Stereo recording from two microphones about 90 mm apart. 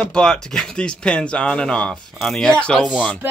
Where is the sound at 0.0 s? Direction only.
10° left (ahead or behind).